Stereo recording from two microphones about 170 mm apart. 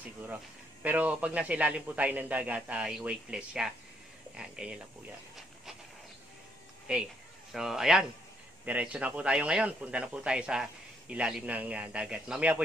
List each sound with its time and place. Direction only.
0.8 s speech: 10° right (ahead or behind)
6.9 s speech: 5° right (ahead or behind)